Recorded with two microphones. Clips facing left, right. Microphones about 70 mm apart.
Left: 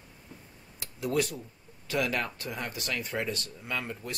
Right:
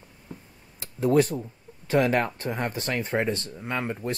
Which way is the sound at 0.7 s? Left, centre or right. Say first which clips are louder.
Right 8 dB; right.